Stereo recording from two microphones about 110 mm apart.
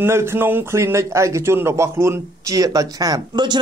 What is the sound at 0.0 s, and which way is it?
A man's voice, 25° right (ahead or behind).